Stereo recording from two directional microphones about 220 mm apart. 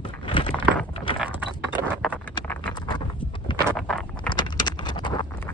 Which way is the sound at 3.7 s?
5° left (ahead or behind).